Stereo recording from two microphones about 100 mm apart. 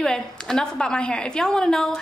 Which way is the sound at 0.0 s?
5° left (ahead or behind).